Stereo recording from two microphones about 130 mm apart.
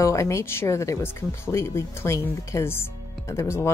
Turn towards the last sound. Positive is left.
turn(degrees=20)  # may be behind; listen again after turning